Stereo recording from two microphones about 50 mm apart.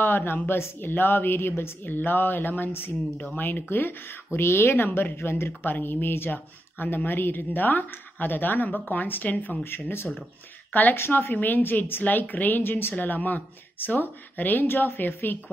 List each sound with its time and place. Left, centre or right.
0.0 s a woman's voice: left
3.7 s speech: left
4.8 s a woman's voice: left
5.1 s speech: left
5.7 s a woman's voice: left
9.6 s speech: left
10.7 s speech: left
11.0 s a woman's voice: left
12.0 s speech: left